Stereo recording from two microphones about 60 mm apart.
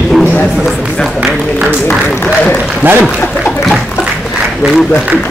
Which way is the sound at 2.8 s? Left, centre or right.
Right.